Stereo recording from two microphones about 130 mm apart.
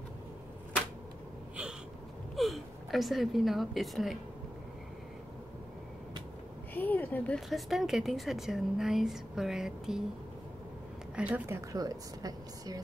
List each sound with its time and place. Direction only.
2.3 s a woman's voice: centre (ahead or behind)
6.7 s a sound: 15° left (ahead or behind)
7.3 s a woman's voice: centre (ahead or behind)
11.1 s a woman's voice: 10° right (ahead or behind); by 12.8 s 30° right (ahead or behind)